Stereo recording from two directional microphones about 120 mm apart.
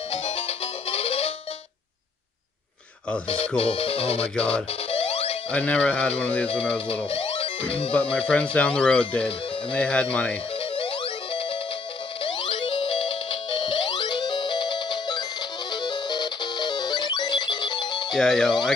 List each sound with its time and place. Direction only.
0.1 s music: 55° left (ahead or behind)
3.3 s speech: 55° left (ahead or behind)
4.9 s music: 55° left (ahead or behind)
5.5 s speech: 10° left (ahead or behind)
7.1 s music: 55° left (ahead or behind)
7.9 s speech: 10° left (ahead or behind)
10.8 s music: 50° left (ahead or behind)
18.1 s speech: 5° left (ahead or behind)